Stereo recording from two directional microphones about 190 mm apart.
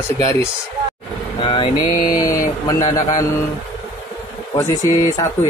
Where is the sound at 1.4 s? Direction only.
25° left (ahead or behind).